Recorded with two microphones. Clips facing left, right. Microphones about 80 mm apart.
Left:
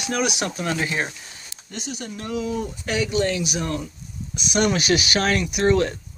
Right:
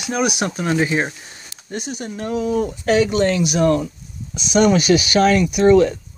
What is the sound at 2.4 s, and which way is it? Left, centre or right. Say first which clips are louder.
Speech: right 6 dB; right.